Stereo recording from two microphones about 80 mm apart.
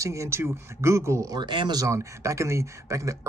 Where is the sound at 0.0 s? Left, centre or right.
Right.